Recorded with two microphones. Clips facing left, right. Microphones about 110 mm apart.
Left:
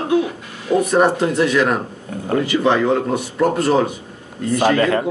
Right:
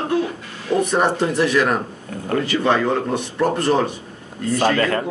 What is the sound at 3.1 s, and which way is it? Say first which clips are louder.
A man's voice: left 2 dB; 5° left (ahead or behind).